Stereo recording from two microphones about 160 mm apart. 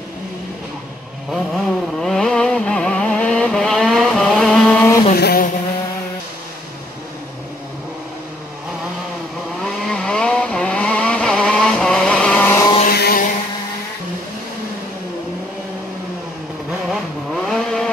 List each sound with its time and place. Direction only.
1.3 s vehicle: centre (ahead or behind)
5.1 s vehicle: 70° left (ahead or behind)
9.6 s vehicle: centre (ahead or behind)
12.8 s a sound: 75° left (ahead or behind)
16.9 s vehicle: centre (ahead or behind)